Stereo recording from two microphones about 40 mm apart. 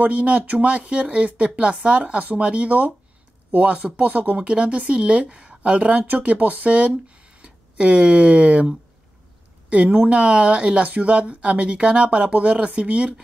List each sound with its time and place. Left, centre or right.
0.0 s speech: right
4.4 s speech: right